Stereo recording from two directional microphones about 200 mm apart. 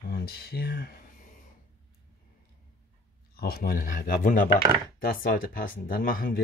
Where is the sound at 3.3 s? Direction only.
50° left (ahead or behind).